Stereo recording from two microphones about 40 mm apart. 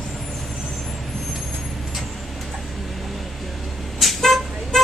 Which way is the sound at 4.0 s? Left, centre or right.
Centre.